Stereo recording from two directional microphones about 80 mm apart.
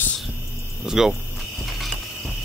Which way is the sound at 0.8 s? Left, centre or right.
Centre.